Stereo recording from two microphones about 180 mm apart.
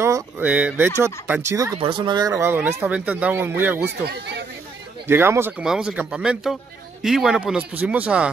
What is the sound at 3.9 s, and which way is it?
Speech, 70° right (ahead or behind).